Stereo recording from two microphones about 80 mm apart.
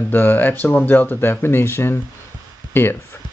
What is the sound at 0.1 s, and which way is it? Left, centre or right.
Speech, left.